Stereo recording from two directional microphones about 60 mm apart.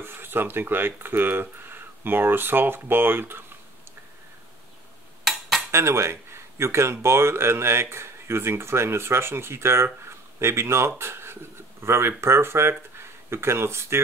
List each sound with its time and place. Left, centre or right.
0.0 s speech: right
5.7 s speech: right
10.0 s a sound: right
11.0 s speech: right